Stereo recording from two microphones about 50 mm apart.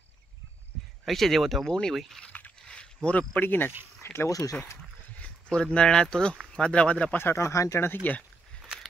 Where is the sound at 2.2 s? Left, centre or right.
Left.